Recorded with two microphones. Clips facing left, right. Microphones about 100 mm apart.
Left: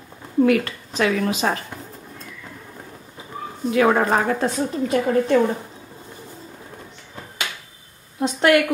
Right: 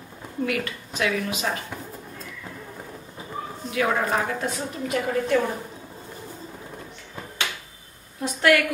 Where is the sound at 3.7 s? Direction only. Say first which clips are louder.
Left 6 dB; 45° left (ahead or behind).